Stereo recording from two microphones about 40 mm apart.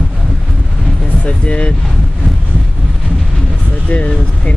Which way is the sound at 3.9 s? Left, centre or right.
Left.